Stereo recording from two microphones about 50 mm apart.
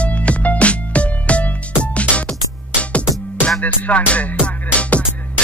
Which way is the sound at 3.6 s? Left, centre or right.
Left.